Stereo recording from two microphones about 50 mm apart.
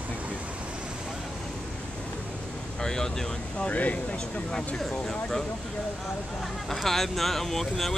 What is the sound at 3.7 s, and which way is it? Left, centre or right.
Speech, left.